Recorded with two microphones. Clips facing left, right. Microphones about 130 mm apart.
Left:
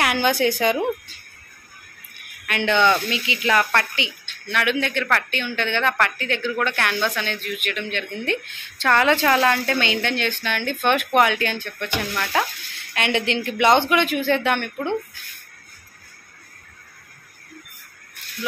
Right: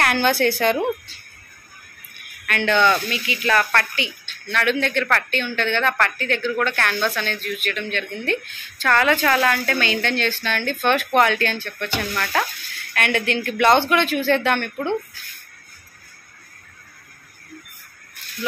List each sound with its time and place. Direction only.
0.0 s a woman's voice: 10° left (ahead or behind)
2.4 s a woman's voice: 15° left (ahead or behind)